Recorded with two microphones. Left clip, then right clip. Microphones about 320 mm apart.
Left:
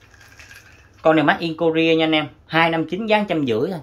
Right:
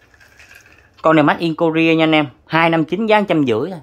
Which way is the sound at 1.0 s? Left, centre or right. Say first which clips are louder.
Right 3 dB; centre.